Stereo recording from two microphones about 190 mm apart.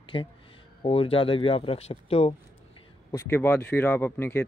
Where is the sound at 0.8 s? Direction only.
30° left (ahead or behind).